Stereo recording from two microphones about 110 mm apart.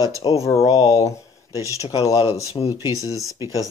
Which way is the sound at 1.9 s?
30° left (ahead or behind).